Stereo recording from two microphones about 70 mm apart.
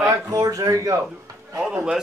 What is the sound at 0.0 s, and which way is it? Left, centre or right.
Speech, right.